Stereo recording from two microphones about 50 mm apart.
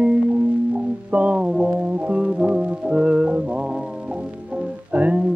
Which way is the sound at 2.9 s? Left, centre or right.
Centre.